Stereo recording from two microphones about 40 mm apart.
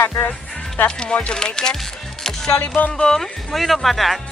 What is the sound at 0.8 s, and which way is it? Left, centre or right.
Speech, left.